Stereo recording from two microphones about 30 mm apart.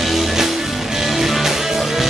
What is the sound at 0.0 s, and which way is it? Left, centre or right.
Music, centre.